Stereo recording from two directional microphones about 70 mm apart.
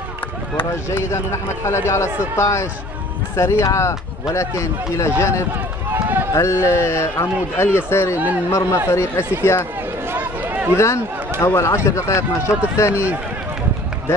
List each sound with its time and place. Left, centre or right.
0.8 s speech: left
6.3 s a man's voice: left
10.1 s run: right
10.8 s speech: left